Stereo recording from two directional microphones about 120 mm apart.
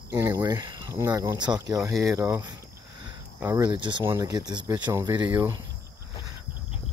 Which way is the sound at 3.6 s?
40° right (ahead or behind).